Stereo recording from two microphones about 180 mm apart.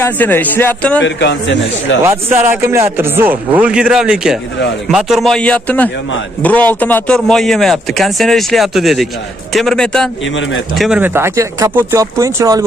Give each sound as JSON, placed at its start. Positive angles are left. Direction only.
{"t": 0.0, "sound": "a man's voice", "side_deg": 10}
{"t": 1.0, "sound": "a man's voice", "side_deg": 85}
{"t": 2.0, "sound": "a man's voice", "side_deg": -15}